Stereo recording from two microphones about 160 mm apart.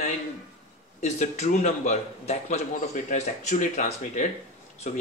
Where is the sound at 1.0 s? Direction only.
45° left (ahead or behind).